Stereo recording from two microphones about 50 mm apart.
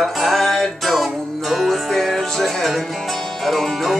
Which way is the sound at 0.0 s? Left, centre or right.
Centre.